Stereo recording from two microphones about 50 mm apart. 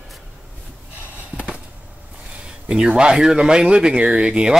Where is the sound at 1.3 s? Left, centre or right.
Right.